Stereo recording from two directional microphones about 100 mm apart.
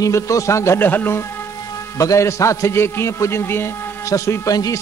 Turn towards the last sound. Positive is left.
turn(degrees=35)  # may be behind; listen again after turning